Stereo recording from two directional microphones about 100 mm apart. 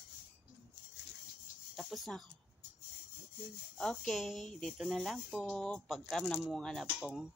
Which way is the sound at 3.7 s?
5° left (ahead or behind).